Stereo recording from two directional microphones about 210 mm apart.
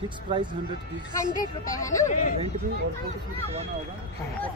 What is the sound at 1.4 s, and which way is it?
Speech, 40° left (ahead or behind).